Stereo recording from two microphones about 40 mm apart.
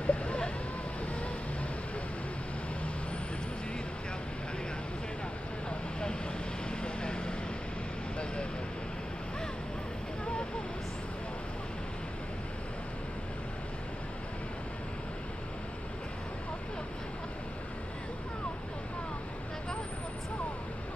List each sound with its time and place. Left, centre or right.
0.0 s vehicle: left
6.7 s vehicle: left